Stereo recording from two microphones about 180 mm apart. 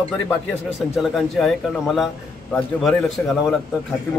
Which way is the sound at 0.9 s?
Centre (ahead or behind).